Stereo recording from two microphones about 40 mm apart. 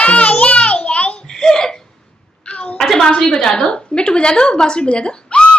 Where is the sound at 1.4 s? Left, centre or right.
Centre.